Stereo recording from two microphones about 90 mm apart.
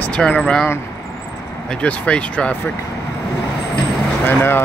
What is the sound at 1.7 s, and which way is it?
Speech, 15° left (ahead or behind).